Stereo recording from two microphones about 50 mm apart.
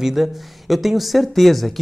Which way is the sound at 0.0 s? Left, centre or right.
Centre.